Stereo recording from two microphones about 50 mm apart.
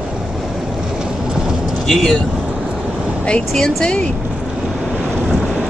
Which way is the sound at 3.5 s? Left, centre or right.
Centre.